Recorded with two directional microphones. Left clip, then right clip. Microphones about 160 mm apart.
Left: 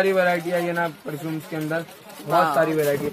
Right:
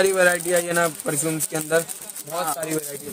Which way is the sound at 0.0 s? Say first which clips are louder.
Right 1 dB; 90° right.